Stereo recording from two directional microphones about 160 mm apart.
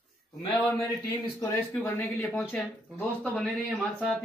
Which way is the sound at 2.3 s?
Centre (ahead or behind).